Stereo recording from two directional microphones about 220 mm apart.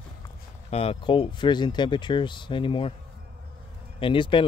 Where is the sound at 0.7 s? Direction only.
25° left (ahead or behind).